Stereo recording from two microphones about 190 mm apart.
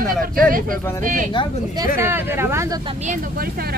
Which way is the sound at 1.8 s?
15° right (ahead or behind).